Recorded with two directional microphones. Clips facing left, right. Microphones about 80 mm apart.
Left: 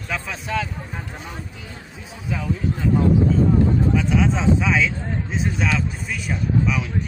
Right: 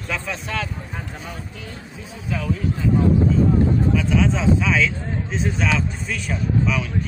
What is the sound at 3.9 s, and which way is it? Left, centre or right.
Speech, left.